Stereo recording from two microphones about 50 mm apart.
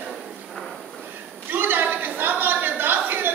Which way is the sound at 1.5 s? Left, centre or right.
Right.